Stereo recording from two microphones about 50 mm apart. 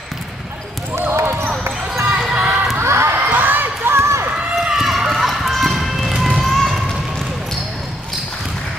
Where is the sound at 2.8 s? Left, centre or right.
Right.